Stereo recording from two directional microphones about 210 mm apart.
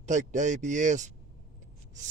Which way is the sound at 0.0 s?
35° right (ahead or behind).